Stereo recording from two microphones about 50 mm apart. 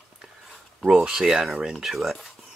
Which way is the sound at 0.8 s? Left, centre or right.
Centre.